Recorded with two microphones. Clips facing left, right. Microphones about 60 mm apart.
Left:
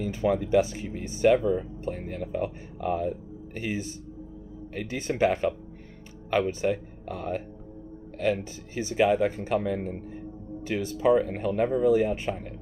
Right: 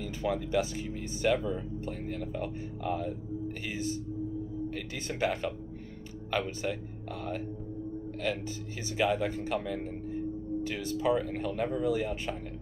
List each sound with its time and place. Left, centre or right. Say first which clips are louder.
0.0 s speech: left 6 dB; left